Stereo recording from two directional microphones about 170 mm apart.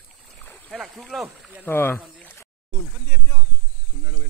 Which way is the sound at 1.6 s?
10° left (ahead or behind).